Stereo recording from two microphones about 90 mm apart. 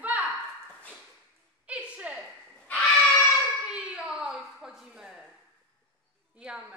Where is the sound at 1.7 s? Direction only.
15° right (ahead or behind).